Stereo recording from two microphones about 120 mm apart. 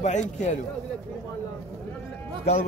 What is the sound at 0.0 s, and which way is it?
Speech, 80° left.